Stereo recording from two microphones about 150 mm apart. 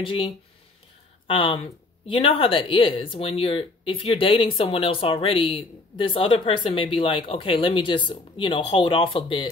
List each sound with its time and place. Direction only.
0.0 s speech: 35° left (ahead or behind)